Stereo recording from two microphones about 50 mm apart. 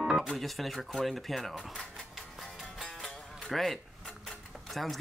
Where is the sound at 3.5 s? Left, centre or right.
Centre.